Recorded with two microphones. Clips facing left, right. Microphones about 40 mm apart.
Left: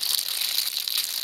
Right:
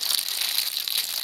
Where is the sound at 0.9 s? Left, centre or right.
Centre.